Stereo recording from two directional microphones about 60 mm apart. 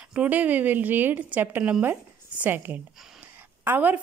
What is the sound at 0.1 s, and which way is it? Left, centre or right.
A woman's voice, right.